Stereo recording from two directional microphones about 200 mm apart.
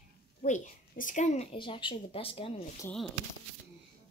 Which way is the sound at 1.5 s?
25° left (ahead or behind).